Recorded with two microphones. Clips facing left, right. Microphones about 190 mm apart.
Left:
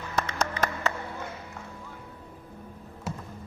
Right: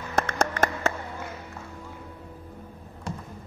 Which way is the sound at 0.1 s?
50° right (ahead or behind).